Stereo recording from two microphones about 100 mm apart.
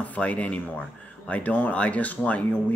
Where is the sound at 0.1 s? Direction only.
15° left (ahead or behind).